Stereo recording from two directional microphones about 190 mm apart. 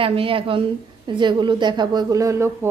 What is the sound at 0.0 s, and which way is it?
A woman's voice, 30° right (ahead or behind).